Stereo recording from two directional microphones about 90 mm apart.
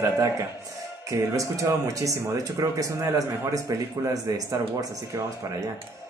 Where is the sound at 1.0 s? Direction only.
40° right (ahead or behind).